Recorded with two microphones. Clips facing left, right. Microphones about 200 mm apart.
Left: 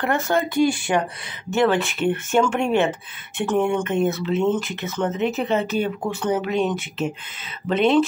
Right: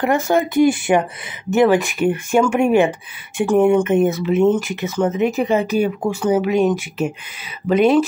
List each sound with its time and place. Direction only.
0.0 s speech: 15° right (ahead or behind)